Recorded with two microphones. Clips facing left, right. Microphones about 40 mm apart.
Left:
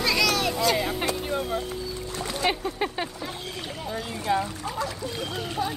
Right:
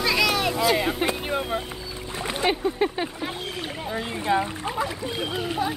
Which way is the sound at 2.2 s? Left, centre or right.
Right.